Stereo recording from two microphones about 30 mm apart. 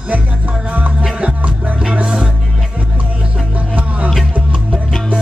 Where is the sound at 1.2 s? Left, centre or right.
Right.